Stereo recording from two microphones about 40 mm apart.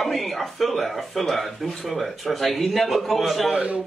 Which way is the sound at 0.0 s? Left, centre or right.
Centre.